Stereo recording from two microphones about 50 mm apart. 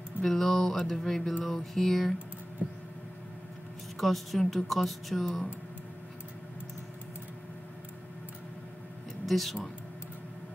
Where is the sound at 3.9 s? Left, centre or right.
Centre.